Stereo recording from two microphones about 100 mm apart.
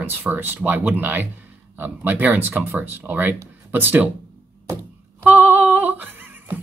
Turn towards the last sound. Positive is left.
turn(degrees=-20)  # may be behind; listen again after turning